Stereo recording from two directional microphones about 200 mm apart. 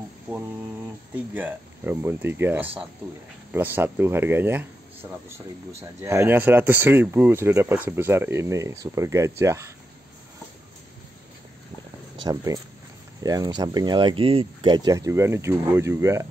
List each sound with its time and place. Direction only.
1.1 s speech: 10° right (ahead or behind)
12.2 s speech: 20° right (ahead or behind)